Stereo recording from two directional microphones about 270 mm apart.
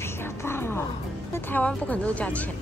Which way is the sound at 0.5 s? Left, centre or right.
Centre.